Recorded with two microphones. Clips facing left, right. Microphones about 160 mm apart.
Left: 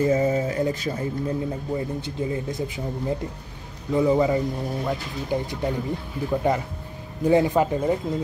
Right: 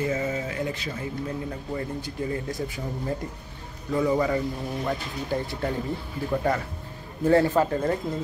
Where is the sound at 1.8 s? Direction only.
20° left (ahead or behind).